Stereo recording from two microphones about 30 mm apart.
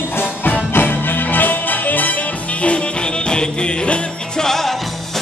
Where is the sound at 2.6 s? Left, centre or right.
Left.